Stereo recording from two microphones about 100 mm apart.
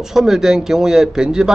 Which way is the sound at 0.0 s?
5° right (ahead or behind).